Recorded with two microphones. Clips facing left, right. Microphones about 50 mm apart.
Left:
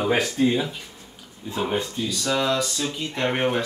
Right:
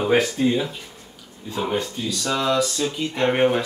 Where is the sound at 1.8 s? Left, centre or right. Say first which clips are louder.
Even; centre.